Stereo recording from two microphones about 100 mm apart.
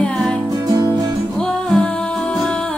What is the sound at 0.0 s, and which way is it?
Music, 10° left (ahead or behind).